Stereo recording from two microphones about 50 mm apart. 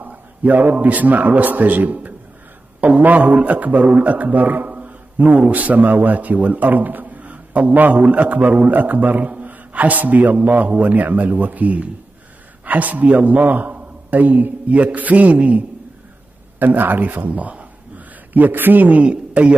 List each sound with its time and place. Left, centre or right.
0.0 s a sound: right
0.7 s a man's voice: right
16.5 s a man's voice: right